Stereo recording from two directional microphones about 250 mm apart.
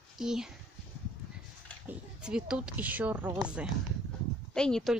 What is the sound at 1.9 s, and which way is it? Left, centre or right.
A woman's voice, centre.